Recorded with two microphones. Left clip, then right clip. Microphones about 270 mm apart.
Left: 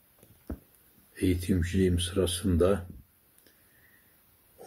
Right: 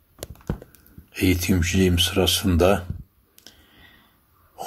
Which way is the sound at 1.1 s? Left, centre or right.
Centre.